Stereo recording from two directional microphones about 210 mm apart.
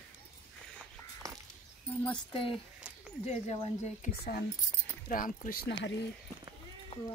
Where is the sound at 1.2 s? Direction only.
15° right (ahead or behind).